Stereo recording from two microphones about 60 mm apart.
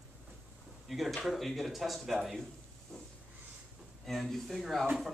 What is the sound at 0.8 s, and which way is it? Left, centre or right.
A man's voice, centre.